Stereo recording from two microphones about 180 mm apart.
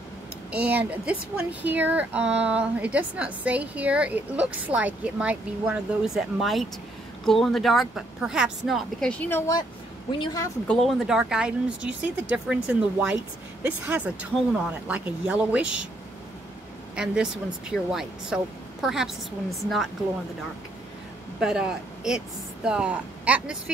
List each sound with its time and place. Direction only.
0.5 s speech: 5° right (ahead or behind)
10.1 s speech: 20° left (ahead or behind)
10.7 s speech: centre (ahead or behind)
16.9 s speech: 5° right (ahead or behind)
21.4 s speech: 5° right (ahead or behind)